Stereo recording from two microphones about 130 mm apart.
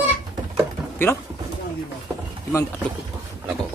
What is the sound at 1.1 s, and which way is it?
Speech, 20° left (ahead or behind).